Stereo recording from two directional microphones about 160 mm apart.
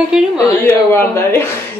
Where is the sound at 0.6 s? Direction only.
15° left (ahead or behind).